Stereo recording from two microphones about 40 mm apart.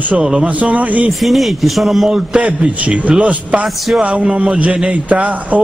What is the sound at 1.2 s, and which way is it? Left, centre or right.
Speech, centre.